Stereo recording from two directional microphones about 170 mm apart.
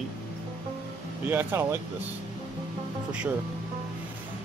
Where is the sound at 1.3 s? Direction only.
10° right (ahead or behind).